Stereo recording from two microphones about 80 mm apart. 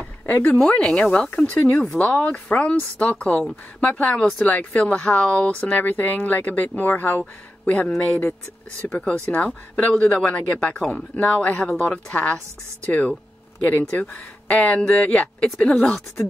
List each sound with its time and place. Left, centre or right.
0.0 s a sound: left
0.6 s a man's voice: centre
11.1 s a man's voice: centre
15.1 s speech: centre